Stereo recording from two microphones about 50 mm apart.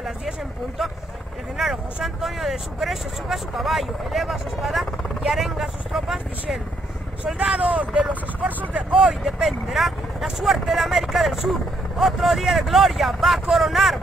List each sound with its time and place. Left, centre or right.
2.0 s speech: centre
7.3 s speech: right
9.0 s speech: centre